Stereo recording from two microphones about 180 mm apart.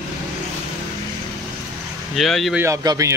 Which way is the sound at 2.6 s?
20° right (ahead or behind).